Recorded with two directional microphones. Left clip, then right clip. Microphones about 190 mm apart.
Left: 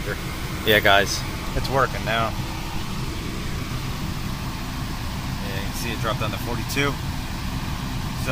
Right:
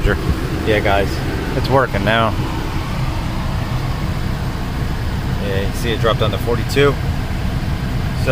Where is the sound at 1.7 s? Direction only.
20° right (ahead or behind).